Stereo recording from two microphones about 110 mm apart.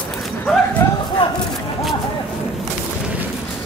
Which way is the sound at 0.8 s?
25° left (ahead or behind).